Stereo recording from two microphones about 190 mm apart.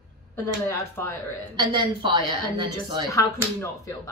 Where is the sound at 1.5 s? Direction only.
25° right (ahead or behind).